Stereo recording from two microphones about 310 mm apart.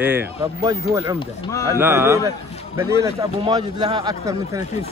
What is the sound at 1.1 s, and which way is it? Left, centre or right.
Speech, centre.